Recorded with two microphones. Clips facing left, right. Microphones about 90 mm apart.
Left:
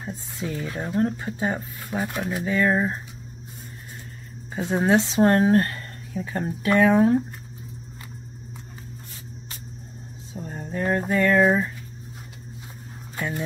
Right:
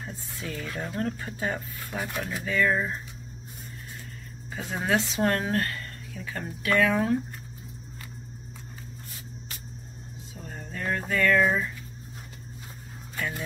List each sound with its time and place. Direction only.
0.0 s speech: 20° left (ahead or behind)
4.6 s speech: 30° left (ahead or behind)
10.3 s speech: 25° left (ahead or behind)
13.1 s a sound: 25° left (ahead or behind)